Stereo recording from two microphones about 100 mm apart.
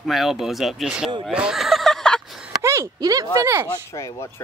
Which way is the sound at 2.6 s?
30° right (ahead or behind).